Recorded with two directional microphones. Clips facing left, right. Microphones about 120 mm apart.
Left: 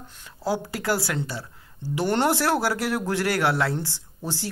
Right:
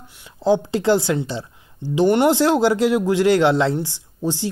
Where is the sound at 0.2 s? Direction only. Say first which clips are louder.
Right 9 dB; 20° right (ahead or behind).